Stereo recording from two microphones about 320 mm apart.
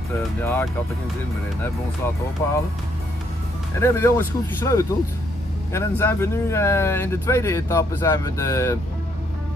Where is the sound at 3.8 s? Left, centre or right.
Centre.